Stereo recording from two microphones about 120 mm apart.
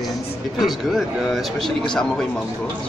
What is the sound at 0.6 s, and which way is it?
Speech, centre (ahead or behind).